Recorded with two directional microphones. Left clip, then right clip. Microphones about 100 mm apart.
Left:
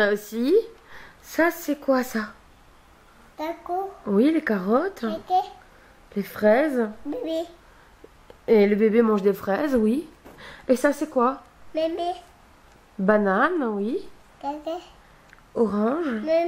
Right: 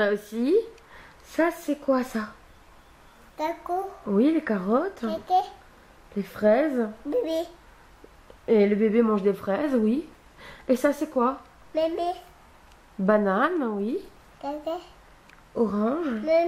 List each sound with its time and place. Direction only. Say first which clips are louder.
0.0 s a woman's voice: left 2 dB; 30° left (ahead or behind)
3.3 s a woman's voice: even; 15° right (ahead or behind)
4.0 s speech: left 3 dB; 35° left (ahead or behind)
5.1 s a woman's voice: even; 10° right (ahead or behind)
6.1 s speech: left 2 dB; 30° left (ahead or behind)
7.1 s a woman's voice: right 2 dB; 15° right (ahead or behind)
8.5 s speech: left 3 dB; 30° left (ahead or behind)
11.7 s a woman's voice: even; 10° right (ahead or behind)
13.0 s a woman's voice: left 2 dB; 25° left (ahead or behind)
14.4 s a woman's voice: left 1 dB; 5° right (ahead or behind)
15.5 s speech: left 2 dB; 30° left (ahead or behind)